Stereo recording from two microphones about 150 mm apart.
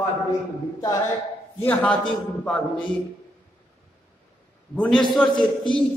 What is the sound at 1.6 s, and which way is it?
Speech, 10° left (ahead or behind).